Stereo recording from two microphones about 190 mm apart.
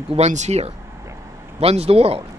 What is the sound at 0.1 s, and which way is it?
Speech, 35° right (ahead or behind).